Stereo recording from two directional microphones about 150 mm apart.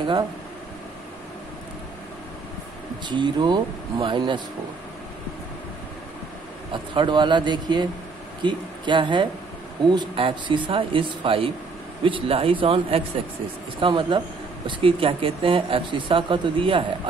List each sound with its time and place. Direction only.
3.1 s speech: 30° right (ahead or behind)
6.7 s speech: 30° right (ahead or behind)